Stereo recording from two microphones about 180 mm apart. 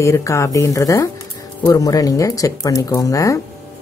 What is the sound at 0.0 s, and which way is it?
Speech, 15° left (ahead or behind).